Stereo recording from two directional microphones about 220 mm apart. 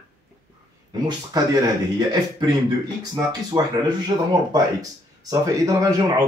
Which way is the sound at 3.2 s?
20° right (ahead or behind).